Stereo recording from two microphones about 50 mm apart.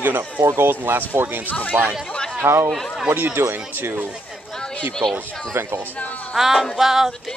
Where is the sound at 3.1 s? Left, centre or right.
Right.